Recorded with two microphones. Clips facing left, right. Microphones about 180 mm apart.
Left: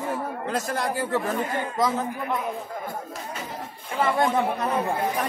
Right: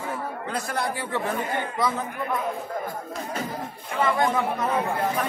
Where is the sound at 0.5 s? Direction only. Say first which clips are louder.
Left 1 dB; 45° left (ahead or behind).